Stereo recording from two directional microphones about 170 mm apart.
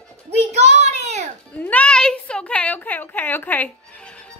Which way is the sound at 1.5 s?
10° left (ahead or behind).